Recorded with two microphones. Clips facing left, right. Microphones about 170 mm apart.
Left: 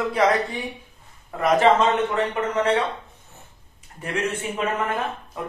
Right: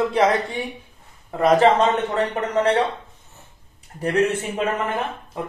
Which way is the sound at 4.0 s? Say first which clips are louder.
Right 7 dB; 35° right (ahead or behind).